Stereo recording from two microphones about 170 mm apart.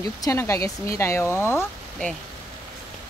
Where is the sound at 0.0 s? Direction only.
20° left (ahead or behind).